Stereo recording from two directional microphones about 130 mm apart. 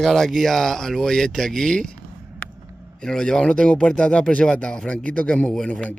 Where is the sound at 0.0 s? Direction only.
Centre (ahead or behind).